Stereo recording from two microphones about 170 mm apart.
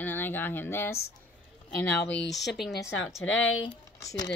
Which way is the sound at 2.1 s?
90° left.